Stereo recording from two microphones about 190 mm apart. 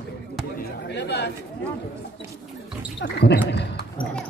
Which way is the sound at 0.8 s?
60° left (ahead or behind).